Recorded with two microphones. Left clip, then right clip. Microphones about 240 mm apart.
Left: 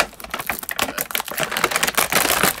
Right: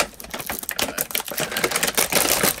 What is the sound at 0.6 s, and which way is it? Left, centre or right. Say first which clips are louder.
Typing: left 2 dB; centre.